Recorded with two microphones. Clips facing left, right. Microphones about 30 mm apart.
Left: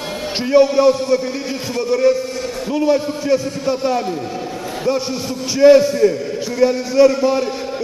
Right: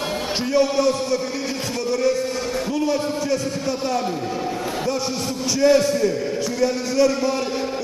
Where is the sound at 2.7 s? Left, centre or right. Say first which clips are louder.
Left 8 dB; centre.